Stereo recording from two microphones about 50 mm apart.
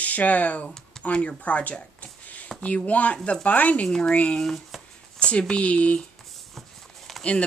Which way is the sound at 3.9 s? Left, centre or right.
Centre.